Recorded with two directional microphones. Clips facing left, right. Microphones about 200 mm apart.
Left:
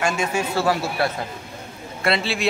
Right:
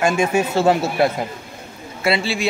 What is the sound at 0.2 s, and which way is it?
Speech, 25° right (ahead or behind).